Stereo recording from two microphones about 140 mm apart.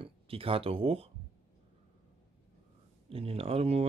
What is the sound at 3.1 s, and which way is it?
Speech, 45° right (ahead or behind).